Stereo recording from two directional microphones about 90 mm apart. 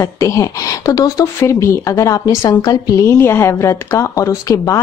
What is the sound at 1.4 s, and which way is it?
Speech, 30° left (ahead or behind).